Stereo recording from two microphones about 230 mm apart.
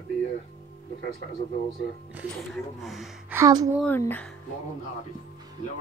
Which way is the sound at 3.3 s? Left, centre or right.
Centre.